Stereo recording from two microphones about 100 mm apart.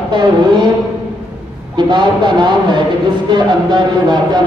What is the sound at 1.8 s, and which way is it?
Speech, 45° right (ahead or behind).